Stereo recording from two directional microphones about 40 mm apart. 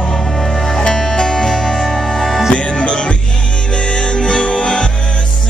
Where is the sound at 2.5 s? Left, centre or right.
Left.